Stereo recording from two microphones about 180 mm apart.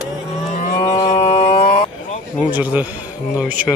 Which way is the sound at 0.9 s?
40° left (ahead or behind).